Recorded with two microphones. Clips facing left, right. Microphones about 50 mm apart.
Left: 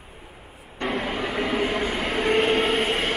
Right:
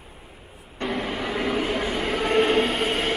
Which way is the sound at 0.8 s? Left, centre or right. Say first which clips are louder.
Left 1 dB; centre.